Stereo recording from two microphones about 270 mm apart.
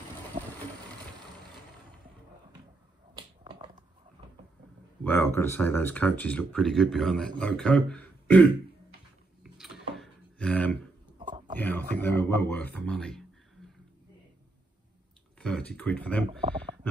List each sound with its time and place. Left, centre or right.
3.4 s finger snapping: centre
5.0 s speech: centre
9.4 s a sound: centre
11.1 s a sound: centre
11.6 s speech: centre
15.3 s speech: centre
16.3 s speech: centre